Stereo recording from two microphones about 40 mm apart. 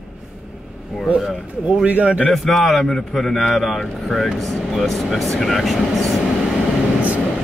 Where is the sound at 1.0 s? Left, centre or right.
Centre.